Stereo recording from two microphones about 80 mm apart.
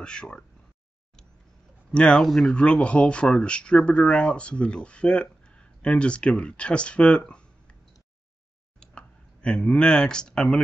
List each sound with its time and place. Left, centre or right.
0.0 s speech: centre
1.9 s speech: centre
8.7 s a sound: centre